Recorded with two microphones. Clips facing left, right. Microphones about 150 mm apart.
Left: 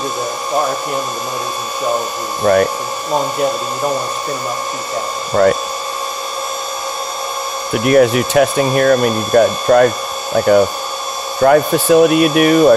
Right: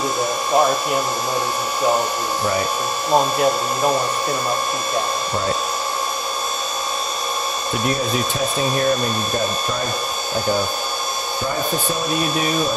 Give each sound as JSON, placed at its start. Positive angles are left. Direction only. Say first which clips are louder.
{"t": 2.4, "sound": "speech", "louder": "left 11 dB", "side_deg": 65}
{"t": 7.8, "sound": "speech", "louder": "left 12 dB", "side_deg": 75}